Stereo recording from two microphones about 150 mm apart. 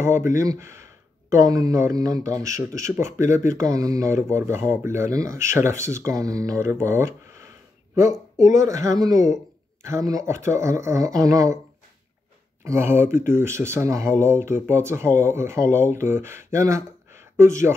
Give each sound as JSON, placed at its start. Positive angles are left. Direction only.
{"t": 0.0, "sound": "speech", "side_deg": -20}
{"t": 8.4, "sound": "speech", "side_deg": -20}
{"t": 12.6, "sound": "speech", "side_deg": -15}